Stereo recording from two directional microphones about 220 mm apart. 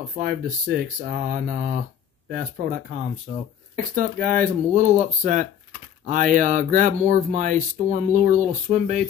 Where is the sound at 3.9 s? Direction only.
40° right (ahead or behind).